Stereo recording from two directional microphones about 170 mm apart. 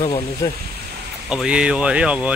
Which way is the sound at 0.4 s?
20° left (ahead or behind).